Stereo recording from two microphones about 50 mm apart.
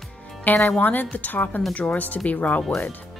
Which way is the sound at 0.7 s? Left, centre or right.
Left.